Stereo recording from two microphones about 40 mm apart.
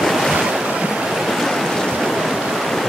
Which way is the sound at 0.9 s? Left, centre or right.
Centre.